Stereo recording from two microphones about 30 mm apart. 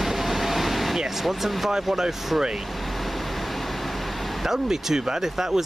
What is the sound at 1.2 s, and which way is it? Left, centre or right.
Speech, centre.